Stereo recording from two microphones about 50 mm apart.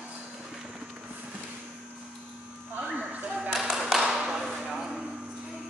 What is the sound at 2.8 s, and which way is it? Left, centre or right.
Music, right.